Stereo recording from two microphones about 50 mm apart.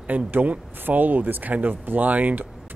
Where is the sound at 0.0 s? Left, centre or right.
Right.